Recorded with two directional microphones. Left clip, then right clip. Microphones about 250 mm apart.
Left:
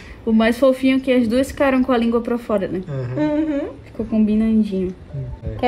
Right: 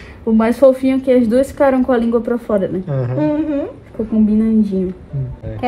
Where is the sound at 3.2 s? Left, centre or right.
Left.